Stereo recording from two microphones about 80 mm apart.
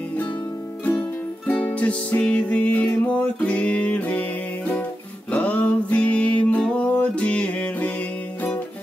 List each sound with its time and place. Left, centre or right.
1.5 s music: centre